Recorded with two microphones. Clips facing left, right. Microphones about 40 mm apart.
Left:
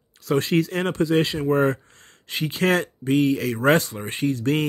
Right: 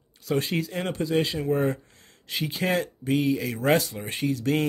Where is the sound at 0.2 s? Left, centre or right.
Left.